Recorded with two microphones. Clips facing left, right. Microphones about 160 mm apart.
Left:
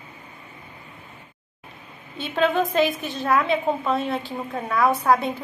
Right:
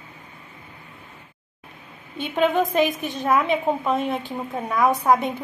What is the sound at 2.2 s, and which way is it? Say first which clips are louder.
A woman's voice: right 1 dB; 20° right (ahead or behind).